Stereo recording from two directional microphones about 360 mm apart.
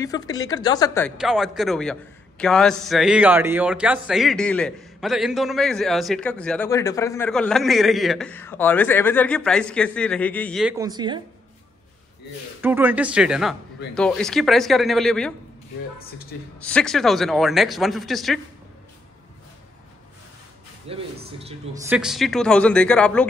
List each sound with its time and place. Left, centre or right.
0.0 s speech: centre
12.6 s speech: centre
16.6 s speech: centre
20.9 s a man's voice: centre
21.8 s speech: centre